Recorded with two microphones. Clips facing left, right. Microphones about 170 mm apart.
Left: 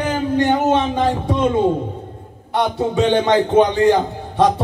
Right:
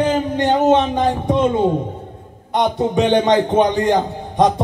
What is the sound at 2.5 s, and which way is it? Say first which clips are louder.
A man's voice: right 1 dB; 20° right (ahead or behind).